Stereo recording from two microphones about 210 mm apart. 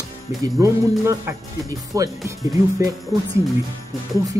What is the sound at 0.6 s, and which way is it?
A man's voice, 15° right (ahead or behind).